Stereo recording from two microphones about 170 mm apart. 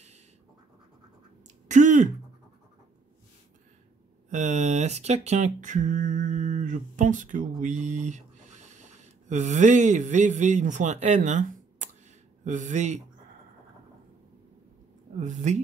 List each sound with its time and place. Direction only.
1.7 s a sound: 45° right (ahead or behind)
4.3 s a man's voice: 45° right (ahead or behind)
15.1 s a man's voice: 45° right (ahead or behind)